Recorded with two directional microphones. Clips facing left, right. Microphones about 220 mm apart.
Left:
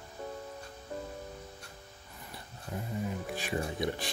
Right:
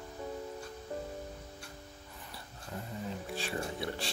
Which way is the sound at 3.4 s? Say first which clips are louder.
Left 4 dB; 15° left (ahead or behind).